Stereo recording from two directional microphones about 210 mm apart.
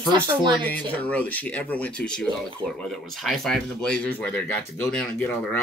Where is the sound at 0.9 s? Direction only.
5° left (ahead or behind).